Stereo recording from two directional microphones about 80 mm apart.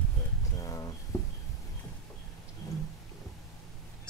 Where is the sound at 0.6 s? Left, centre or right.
Left.